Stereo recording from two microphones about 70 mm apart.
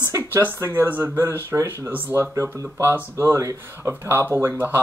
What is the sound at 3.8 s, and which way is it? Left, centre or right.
Speech, right.